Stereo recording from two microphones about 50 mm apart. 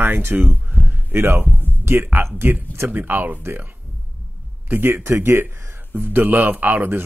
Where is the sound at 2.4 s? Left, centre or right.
Right.